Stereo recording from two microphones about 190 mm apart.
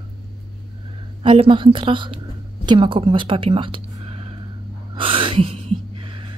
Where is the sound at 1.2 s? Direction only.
25° right (ahead or behind).